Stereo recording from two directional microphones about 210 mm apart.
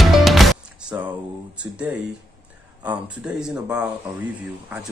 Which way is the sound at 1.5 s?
5° right (ahead or behind).